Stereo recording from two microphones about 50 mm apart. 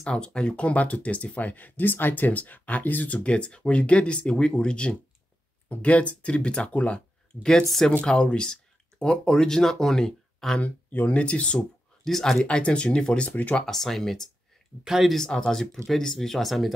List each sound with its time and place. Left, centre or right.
0.0 s speech: centre; by 3.3 s left
3.3 s speech: left
8.0 s speech: centre
10.6 s speech: left
12.0 s speech: centre
12.4 s speech: left
13.3 s speech: left
13.7 s speech: centre
14.9 s speech: centre
15.1 s speech: centre